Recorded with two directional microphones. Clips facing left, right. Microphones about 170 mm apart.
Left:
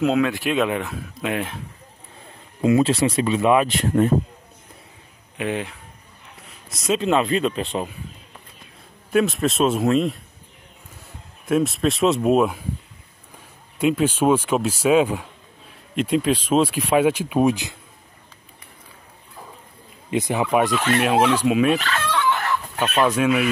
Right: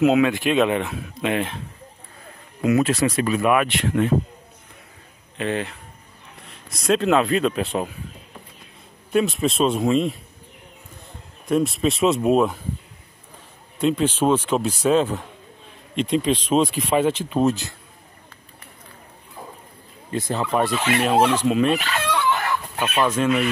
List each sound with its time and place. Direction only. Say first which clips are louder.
0.0 s speech: right 3 dB; 5° right (ahead or behind)
2.6 s speech: left 1 dB; 30° left (ahead or behind)
3.6 s speech: left 2 dB; 40° left (ahead or behind)
5.4 s speech: right 1 dB; 10° left (ahead or behind)
9.1 s speech: left 1 dB; centre (ahead or behind)
11.4 s speech: even; centre (ahead or behind)
13.7 s speech: left 1 dB; 10° left (ahead or behind)
20.1 s speech: left 3 dB; 15° left (ahead or behind)
20.7 s speech: left 1 dB; 10° right (ahead or behind)
21.0 s speech: right 1 dB; 5° left (ahead or behind)
21.7 s chicken: even; 15° right (ahead or behind)
23.0 s speech: left 1 dB; 10° left (ahead or behind)